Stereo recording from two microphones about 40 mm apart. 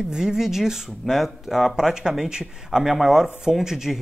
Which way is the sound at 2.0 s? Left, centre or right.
Centre.